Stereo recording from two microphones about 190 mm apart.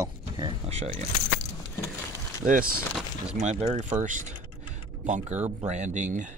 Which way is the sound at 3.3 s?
35° right (ahead or behind).